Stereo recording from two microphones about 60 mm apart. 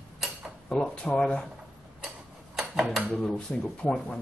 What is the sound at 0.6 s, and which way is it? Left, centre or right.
Speech, centre.